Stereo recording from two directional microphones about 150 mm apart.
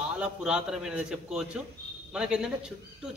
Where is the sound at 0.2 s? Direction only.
5° right (ahead or behind).